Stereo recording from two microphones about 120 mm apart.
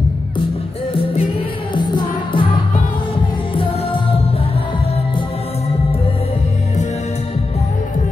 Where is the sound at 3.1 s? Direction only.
50° left (ahead or behind).